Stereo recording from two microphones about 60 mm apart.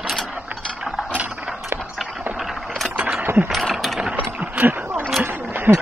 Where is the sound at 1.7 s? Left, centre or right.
Right.